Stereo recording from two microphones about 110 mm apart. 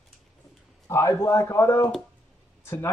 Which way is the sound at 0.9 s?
25° left (ahead or behind).